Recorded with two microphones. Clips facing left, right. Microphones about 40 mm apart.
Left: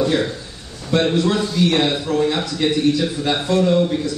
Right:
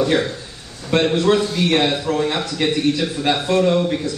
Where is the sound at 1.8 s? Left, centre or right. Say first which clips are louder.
Even; centre.